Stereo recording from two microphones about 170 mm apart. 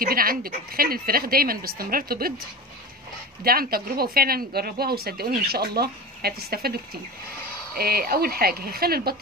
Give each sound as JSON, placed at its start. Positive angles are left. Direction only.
{"t": 0.0, "sound": "speech", "side_deg": -60}
{"t": 3.4, "sound": "speech", "side_deg": -60}